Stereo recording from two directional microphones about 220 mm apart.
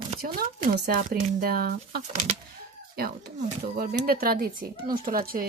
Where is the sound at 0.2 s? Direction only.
40° right (ahead or behind).